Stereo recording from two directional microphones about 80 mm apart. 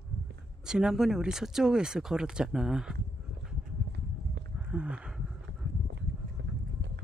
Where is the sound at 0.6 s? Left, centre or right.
Centre.